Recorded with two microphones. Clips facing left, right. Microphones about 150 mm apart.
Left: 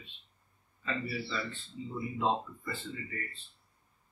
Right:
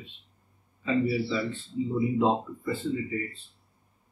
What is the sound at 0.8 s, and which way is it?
A man's voice, 5° right (ahead or behind).